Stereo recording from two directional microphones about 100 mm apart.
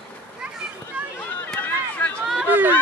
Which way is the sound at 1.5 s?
15° left (ahead or behind).